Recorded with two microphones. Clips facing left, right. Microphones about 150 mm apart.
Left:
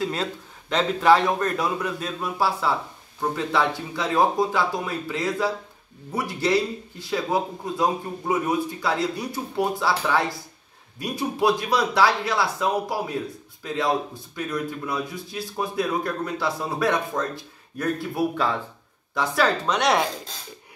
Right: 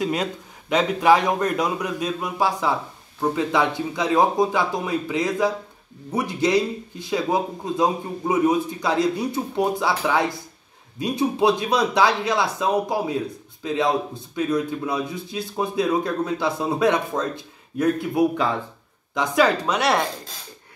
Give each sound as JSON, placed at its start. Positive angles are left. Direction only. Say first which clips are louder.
{"t": 0.0, "sound": "a man's voice", "louder": "right 3 dB", "side_deg": -15}